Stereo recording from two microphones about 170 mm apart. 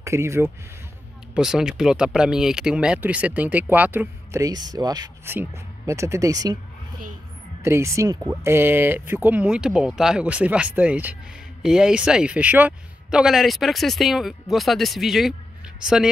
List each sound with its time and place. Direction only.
0.0 s speech: 15° right (ahead or behind)
1.3 s speech: 5° right (ahead or behind); by 6.6 s 20° right (ahead or behind)
7.6 s speech: 15° right (ahead or behind)